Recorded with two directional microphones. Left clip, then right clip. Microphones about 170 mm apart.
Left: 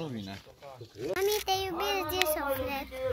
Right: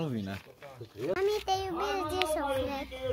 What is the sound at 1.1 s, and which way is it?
Speech, 5° right (ahead or behind).